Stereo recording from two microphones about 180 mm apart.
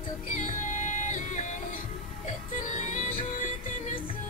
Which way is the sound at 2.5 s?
45° left (ahead or behind).